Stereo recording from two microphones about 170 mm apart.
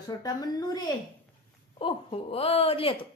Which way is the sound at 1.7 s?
35° left (ahead or behind).